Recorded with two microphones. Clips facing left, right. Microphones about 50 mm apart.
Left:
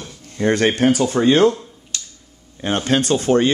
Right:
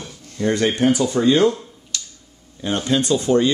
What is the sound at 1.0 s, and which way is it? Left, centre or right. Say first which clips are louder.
Speech: left 2 dB; left.